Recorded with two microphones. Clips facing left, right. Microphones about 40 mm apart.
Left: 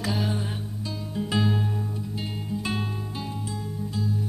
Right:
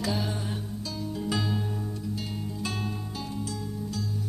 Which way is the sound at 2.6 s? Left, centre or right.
Left.